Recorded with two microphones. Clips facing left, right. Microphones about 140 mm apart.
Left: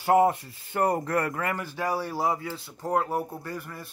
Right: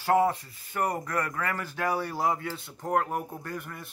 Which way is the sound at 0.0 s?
20° left (ahead or behind).